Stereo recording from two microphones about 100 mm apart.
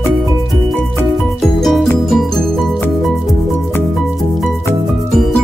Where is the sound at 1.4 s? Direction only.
Centre (ahead or behind).